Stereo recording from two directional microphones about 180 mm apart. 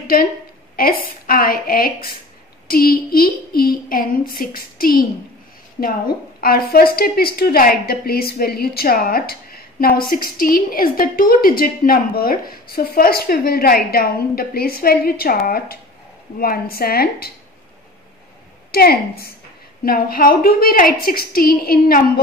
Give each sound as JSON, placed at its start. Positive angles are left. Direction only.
{"t": 0.0, "sound": "a woman's voice", "side_deg": 55}
{"t": 18.7, "sound": "a woman's voice", "side_deg": 60}